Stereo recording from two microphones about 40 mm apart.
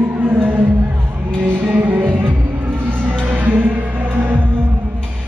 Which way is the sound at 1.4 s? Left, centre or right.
Right.